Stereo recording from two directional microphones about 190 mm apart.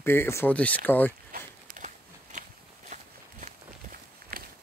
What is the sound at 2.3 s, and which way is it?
Walk, 40° right (ahead or behind).